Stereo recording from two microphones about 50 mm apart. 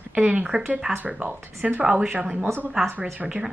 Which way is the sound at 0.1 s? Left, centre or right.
Right.